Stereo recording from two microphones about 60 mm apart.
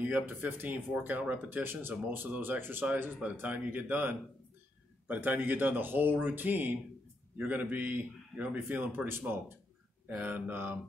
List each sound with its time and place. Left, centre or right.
0.0 s a man's voice: right